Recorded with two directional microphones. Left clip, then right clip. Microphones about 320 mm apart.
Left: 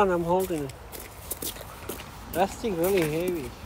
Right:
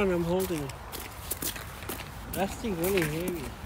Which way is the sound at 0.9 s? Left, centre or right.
Centre.